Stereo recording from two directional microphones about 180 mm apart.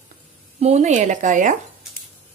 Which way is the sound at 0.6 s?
40° right (ahead or behind).